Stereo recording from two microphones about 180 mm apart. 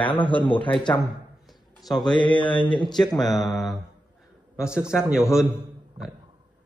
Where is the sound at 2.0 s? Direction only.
25° left (ahead or behind).